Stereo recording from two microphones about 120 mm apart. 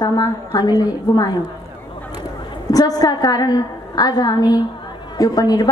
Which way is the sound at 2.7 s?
30° left (ahead or behind).